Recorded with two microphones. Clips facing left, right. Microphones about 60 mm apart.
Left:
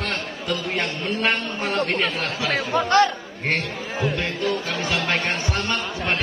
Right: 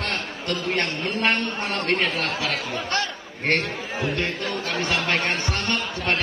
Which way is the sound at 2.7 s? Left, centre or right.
Left.